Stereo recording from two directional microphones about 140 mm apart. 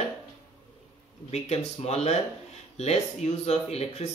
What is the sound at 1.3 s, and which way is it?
Speech, 50° left (ahead or behind).